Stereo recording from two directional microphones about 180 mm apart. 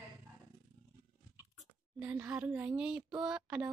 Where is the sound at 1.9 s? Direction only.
10° right (ahead or behind).